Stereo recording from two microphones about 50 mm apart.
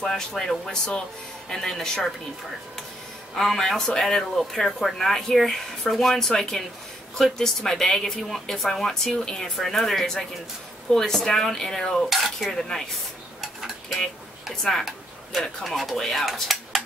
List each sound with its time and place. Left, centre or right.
0.0 s speech: centre
0.7 s speech: centre
3.3 s speech: centre
12.1 s speech: centre
14.5 s speech: centre
15.6 s speech: centre
16.3 s a sound: centre